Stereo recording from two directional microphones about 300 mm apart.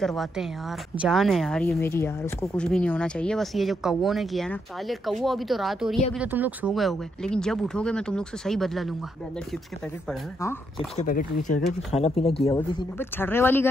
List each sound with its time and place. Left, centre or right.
0.0 s a woman's voice: centre
10.0 s a woman's voice: centre
11.0 s speech: left; by 13.7 s centre